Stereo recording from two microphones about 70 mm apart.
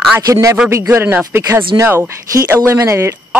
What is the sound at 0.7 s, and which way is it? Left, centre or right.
Speech, right.